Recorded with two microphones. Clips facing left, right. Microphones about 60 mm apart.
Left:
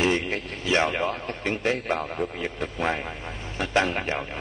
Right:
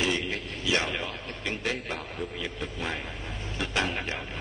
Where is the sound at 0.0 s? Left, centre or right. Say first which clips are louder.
Left 5 dB; left.